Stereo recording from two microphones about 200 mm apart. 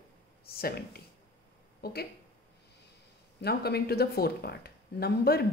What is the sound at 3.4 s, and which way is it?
Speech, 50° left (ahead or behind).